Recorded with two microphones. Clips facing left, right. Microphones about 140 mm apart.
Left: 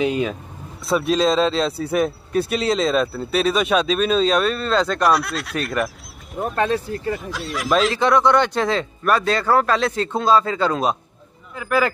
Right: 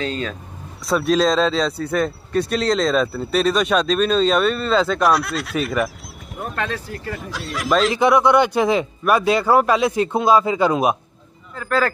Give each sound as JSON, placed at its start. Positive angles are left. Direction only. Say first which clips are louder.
{"t": 0.0, "sound": "speech", "louder": "left 5 dB", "side_deg": 15}
{"t": 0.8, "sound": "speech", "louder": "right 1 dB", "side_deg": 0}
{"t": 6.5, "sound": "speech", "louder": "left 6 dB", "side_deg": 25}
{"t": 7.2, "sound": "speech", "louder": "left 1 dB", "side_deg": 0}
{"t": 7.9, "sound": "speech", "louder": "right 3 dB", "side_deg": -10}
{"t": 11.5, "sound": "speech", "louder": "even", "side_deg": 15}